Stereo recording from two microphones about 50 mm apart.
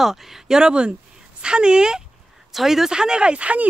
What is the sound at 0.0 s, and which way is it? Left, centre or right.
Speech, centre.